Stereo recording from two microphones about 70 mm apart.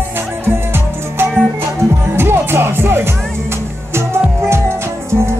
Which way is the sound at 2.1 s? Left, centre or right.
Right.